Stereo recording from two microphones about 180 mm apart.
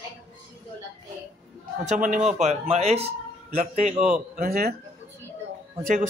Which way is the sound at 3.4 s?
55° right (ahead or behind).